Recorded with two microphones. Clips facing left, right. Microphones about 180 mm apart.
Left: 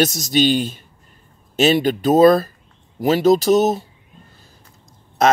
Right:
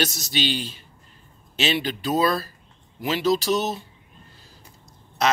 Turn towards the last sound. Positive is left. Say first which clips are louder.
# left 7 dB
turn(degrees=50)  # may be behind; listen again after turning